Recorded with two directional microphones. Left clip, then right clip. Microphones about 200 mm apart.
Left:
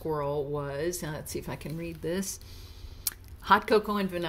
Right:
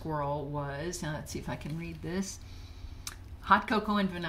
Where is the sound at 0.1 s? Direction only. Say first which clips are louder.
Left 3 dB; 30° left (ahead or behind).